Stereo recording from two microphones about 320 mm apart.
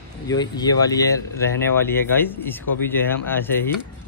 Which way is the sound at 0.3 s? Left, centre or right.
Centre.